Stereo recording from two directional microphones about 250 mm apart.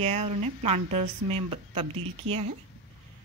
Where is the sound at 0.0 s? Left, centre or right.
Right.